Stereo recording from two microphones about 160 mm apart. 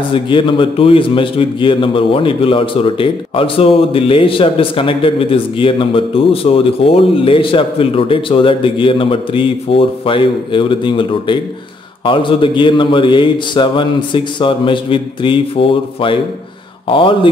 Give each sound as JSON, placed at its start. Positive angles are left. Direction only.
{"t": 0.1, "sound": "a man's voice", "side_deg": 30}